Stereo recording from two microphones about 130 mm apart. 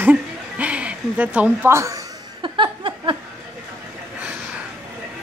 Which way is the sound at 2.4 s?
40° right (ahead or behind).